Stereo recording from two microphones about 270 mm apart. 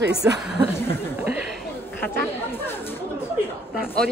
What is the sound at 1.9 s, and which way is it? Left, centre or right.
Chatter, centre.